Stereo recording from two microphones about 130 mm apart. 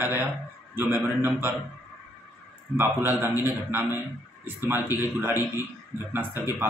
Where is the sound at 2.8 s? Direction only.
20° right (ahead or behind).